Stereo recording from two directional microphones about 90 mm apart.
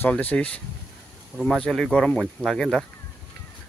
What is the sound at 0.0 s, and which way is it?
Speech, 15° left (ahead or behind).